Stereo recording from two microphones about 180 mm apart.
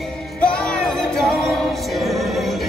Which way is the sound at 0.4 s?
5° left (ahead or behind).